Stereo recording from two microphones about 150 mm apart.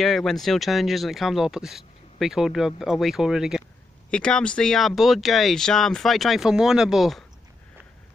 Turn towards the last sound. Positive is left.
turn(degrees=0)  # may be behind; listen again after turning